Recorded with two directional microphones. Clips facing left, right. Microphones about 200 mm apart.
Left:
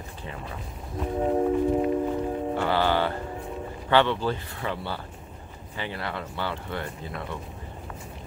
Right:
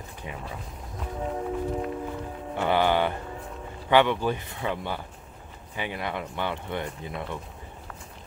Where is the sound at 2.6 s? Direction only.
15° right (ahead or behind).